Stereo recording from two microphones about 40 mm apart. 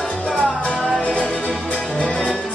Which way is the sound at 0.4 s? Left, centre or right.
Left.